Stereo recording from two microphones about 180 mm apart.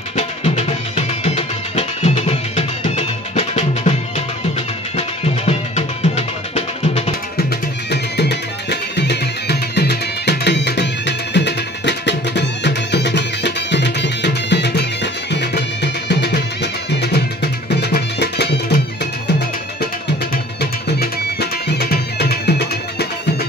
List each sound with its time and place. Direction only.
0.1 s music: 40° left (ahead or behind)
4.9 s music: 35° left (ahead or behind)
7.9 s music: 70° left (ahead or behind)
21.0 s music: 65° left (ahead or behind)